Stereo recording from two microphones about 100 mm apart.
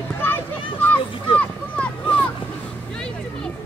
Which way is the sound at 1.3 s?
15° left (ahead or behind).